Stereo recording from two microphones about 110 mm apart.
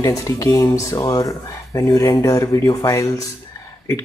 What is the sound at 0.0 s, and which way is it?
Speech, 30° left (ahead or behind).